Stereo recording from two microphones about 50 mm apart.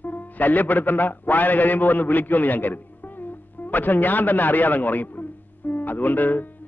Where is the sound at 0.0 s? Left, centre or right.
Left.